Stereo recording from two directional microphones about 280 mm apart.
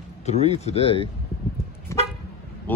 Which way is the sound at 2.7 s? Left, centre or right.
Centre.